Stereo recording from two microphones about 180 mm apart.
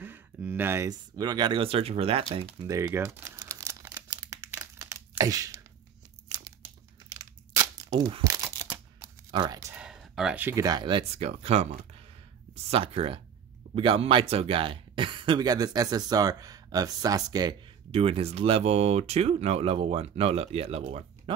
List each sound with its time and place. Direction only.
0.0 s speech: 10° right (ahead or behind); by 2.4 s 35° right (ahead or behind)
2.6 s crumpling: 15° right (ahead or behind)
6.2 s tearing: 20° right (ahead or behind)
8.2 s crumpling: 20° right (ahead or behind)
8.6 s a sound: 10° right (ahead or behind)
9.3 s speech: 25° right (ahead or behind)
9.8 s speech: 5° right (ahead or behind); by 17.6 s 20° right (ahead or behind)
17.9 s speech: 30° right (ahead or behind)